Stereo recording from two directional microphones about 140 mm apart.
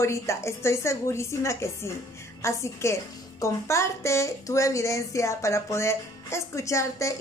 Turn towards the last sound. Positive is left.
turn(degrees=20)  # may be behind; listen again after turning